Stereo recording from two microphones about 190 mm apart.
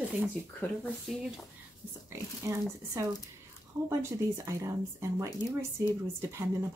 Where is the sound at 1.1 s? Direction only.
Centre (ahead or behind).